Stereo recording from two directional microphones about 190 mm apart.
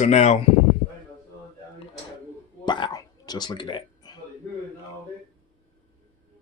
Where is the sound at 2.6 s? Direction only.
25° left (ahead or behind).